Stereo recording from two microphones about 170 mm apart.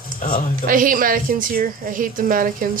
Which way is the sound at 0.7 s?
55° right (ahead or behind).